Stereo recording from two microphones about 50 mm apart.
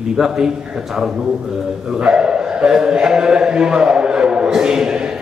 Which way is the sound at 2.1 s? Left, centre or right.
Centre.